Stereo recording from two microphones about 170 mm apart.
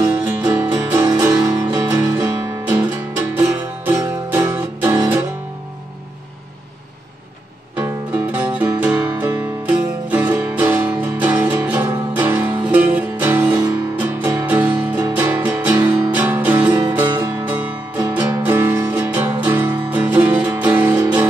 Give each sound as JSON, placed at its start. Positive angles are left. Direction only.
{"t": 0.4, "sound": "music", "side_deg": -15}
{"t": 7.7, "sound": "music", "side_deg": -10}
{"t": 20.9, "sound": "music", "side_deg": -25}